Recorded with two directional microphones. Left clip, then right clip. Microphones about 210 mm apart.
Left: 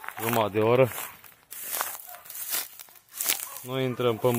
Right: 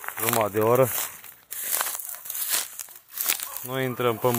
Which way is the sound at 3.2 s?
20° right (ahead or behind).